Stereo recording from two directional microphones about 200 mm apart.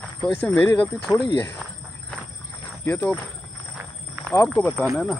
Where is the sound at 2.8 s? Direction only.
10° left (ahead or behind).